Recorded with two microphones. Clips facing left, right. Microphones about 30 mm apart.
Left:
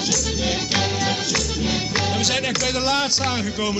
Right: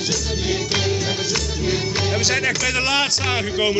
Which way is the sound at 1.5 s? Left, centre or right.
Left.